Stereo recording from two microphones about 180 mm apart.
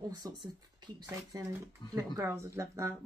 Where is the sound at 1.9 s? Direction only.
15° right (ahead or behind).